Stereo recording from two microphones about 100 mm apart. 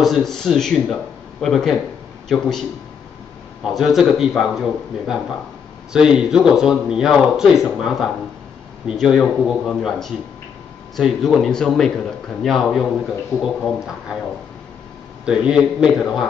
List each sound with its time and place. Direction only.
0.0 s a man's voice: centre (ahead or behind)
3.6 s a man's voice: centre (ahead or behind)
15.2 s a man's voice: 10° right (ahead or behind)